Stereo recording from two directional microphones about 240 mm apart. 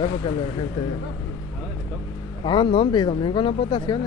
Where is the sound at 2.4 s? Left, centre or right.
Centre.